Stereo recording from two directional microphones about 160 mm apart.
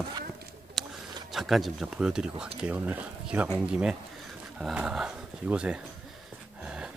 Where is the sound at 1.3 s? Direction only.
Centre (ahead or behind).